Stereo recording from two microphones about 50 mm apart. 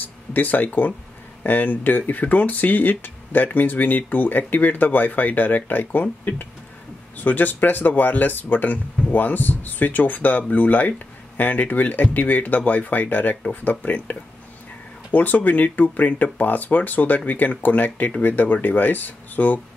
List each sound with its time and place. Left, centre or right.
0.0 s a sound: left
1.4 s speech: left
15.1 s speech: left